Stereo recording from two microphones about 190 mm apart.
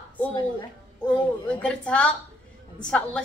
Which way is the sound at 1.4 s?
5° left (ahead or behind).